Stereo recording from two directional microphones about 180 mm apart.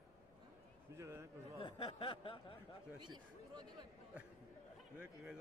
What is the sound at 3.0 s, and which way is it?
Speech, 25° right (ahead or behind).